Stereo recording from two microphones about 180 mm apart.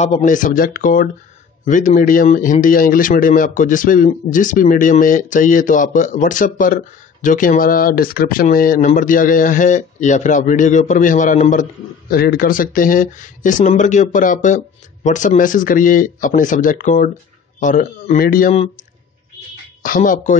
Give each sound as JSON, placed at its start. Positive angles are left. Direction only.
{"t": 0.0, "sound": "speech", "side_deg": 40}
{"t": 12.1, "sound": "speech", "side_deg": 55}
{"t": 19.8, "sound": "speech", "side_deg": 50}